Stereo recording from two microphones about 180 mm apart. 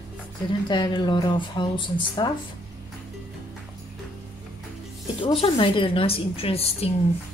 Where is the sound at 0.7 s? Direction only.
25° left (ahead or behind).